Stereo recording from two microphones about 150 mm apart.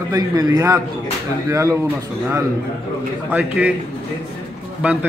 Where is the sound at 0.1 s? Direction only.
25° right (ahead or behind).